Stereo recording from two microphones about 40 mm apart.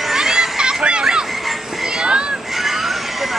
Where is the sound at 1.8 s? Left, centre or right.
Centre.